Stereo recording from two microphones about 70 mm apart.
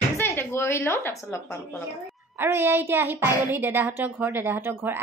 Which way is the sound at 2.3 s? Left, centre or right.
Right.